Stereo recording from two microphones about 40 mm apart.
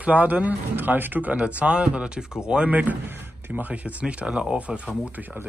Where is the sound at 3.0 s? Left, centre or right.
Right.